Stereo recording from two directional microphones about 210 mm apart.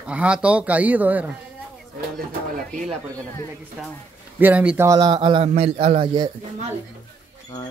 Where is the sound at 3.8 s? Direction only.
Centre (ahead or behind); by 6.3 s 20° right (ahead or behind).